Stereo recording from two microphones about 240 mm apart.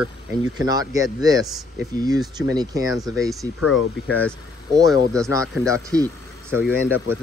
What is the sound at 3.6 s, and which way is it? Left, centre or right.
Speech, left.